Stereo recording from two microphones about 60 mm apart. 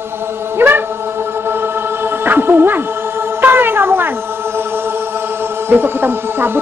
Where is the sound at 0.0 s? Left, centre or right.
Right.